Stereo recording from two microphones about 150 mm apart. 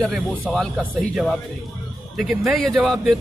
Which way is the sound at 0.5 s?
5° right (ahead or behind).